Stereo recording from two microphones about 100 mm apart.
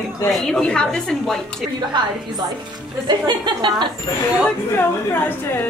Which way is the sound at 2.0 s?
50° right (ahead or behind).